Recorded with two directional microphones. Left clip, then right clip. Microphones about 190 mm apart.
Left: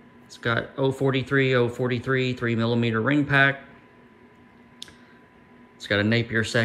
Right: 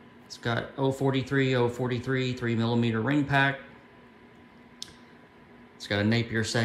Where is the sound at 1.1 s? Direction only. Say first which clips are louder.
Left 5 dB; 5° left (ahead or behind).